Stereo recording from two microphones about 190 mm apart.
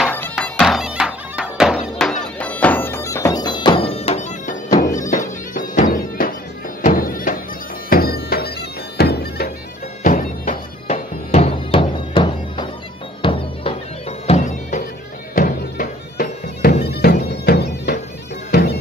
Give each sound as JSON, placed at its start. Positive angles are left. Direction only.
{"t": 0.4, "sound": "music", "side_deg": 0}
{"t": 4.7, "sound": "bagpipes", "side_deg": 45}
{"t": 5.1, "sound": "music", "side_deg": 45}
{"t": 10.0, "sound": "bagpipes", "side_deg": 45}
{"t": 13.2, "sound": "music", "side_deg": 30}
{"t": 14.2, "sound": "bagpipes", "side_deg": 40}